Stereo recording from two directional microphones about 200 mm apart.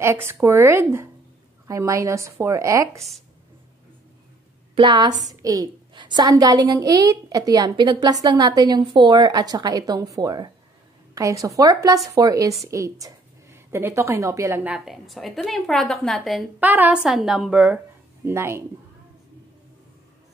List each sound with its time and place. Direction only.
0.0 s speech: 10° right (ahead or behind)
4.7 s a woman's voice: 20° right (ahead or behind)